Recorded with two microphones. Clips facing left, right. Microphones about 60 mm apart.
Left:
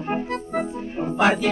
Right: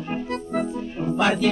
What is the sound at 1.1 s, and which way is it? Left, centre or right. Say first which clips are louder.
Music: left 1 dB; left.